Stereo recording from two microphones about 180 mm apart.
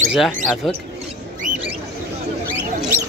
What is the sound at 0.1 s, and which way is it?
Speech, centre (ahead or behind).